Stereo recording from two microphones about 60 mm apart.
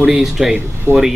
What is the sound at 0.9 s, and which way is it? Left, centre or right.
Speech, right.